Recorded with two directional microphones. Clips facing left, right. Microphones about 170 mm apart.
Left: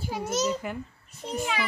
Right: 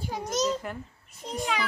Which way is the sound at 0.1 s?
5° left (ahead or behind).